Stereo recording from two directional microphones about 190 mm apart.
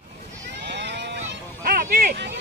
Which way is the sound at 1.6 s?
45° right (ahead or behind).